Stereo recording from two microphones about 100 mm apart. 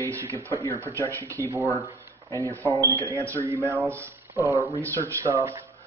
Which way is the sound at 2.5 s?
30° right (ahead or behind).